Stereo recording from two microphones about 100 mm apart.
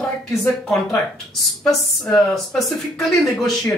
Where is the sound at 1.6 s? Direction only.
5° left (ahead or behind).